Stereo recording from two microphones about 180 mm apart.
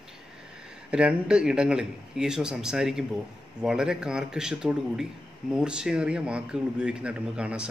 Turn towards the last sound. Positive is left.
turn(degrees=-5)  # may be behind; listen again after turning